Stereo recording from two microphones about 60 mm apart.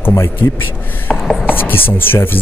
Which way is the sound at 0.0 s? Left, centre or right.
Left.